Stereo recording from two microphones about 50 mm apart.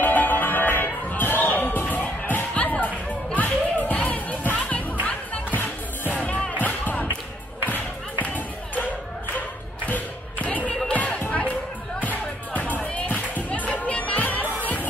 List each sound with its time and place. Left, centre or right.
0.0 s music: left
4.4 s music: left
8.3 s a sound: left
12.0 s music: left